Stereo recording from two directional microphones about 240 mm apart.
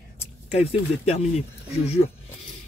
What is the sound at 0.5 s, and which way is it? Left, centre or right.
Speech, left.